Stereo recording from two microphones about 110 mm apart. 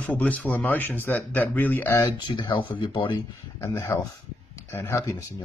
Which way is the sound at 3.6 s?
25° left (ahead or behind).